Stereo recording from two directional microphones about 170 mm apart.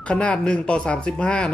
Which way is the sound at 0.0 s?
5° left (ahead or behind).